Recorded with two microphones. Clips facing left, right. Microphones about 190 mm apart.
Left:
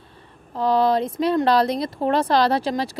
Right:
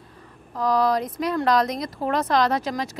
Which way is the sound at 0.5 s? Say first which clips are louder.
Left 2 dB; 25° left (ahead or behind).